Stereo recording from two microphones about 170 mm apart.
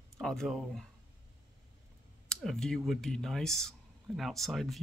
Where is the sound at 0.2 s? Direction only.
5° left (ahead or behind).